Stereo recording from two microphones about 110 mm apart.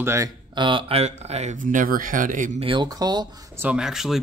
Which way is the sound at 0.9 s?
70° right (ahead or behind).